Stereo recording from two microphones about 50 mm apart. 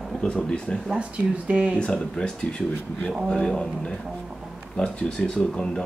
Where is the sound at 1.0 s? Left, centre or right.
Right.